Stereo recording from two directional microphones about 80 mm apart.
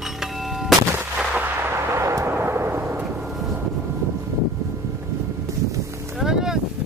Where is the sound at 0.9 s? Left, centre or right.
Right.